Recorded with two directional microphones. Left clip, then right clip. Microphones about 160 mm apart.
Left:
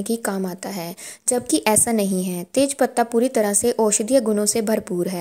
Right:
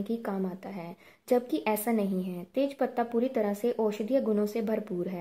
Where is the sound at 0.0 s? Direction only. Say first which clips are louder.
Left 9 dB; 30° left (ahead or behind).